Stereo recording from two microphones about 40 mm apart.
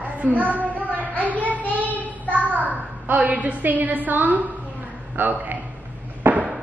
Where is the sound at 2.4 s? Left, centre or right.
Right.